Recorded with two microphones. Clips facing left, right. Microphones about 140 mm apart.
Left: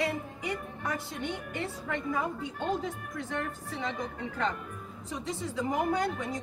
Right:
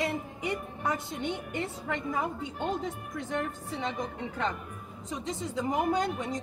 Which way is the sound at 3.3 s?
25° right (ahead or behind).